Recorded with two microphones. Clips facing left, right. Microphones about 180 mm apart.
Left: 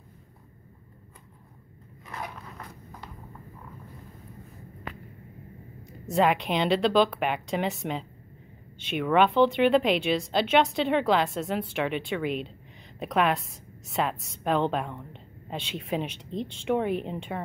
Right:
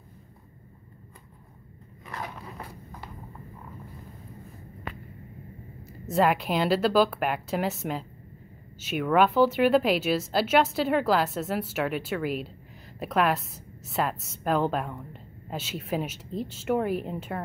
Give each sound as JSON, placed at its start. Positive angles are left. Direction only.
{"t": 5.9, "sound": "a woman's voice", "side_deg": 0}